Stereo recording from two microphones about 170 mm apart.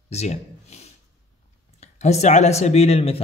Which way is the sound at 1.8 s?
40° left (ahead or behind).